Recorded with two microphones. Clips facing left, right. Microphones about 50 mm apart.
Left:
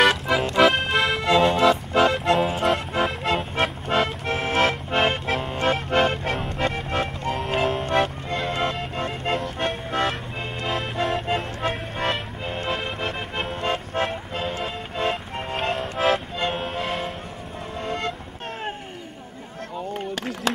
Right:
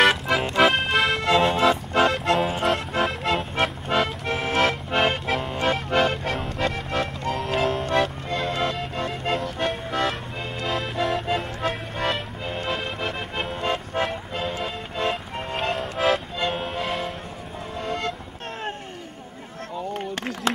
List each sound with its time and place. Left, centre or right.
0.0 s music: centre
8.9 s music: left
11.3 s music: left
12.1 s music: centre